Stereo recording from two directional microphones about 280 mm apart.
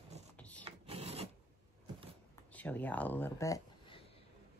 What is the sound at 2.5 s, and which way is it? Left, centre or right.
Speech, centre.